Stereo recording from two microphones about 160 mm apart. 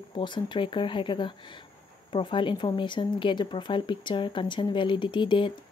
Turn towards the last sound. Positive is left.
turn(degrees=30)  # may be behind; listen again after turning